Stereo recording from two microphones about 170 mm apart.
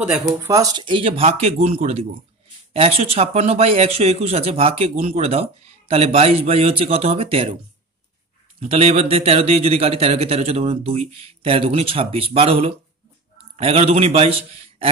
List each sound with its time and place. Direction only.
0.0 s a man's voice: 15° right (ahead or behind); by 7.5 s 35° right (ahead or behind)
8.5 s a man's voice: 35° right (ahead or behind)